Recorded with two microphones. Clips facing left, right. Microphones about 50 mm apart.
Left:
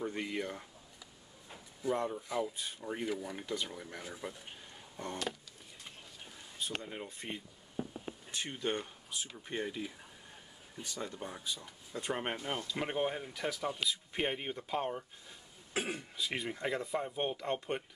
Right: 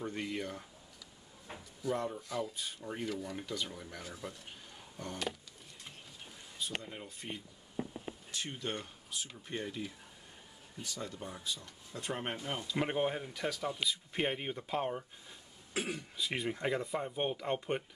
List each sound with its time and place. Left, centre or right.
0.0 s speech: centre
1.8 s speech: centre
7.1 s speech: left; by 12.6 s centre
12.6 s speech: centre
15.7 s speech: left
16.2 s speech: centre